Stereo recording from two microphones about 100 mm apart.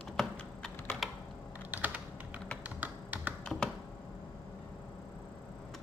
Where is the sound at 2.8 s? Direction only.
15° right (ahead or behind).